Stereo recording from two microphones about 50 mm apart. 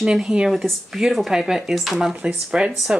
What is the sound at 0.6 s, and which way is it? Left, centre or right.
Speech, centre.